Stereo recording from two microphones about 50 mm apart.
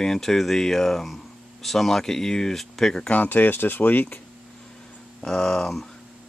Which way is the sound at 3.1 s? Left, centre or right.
Left.